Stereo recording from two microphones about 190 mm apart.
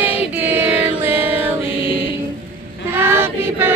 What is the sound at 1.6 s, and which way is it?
Mantra, 25° left (ahead or behind).